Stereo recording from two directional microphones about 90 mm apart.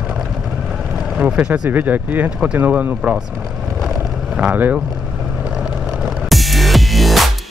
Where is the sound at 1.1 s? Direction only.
15° right (ahead or behind).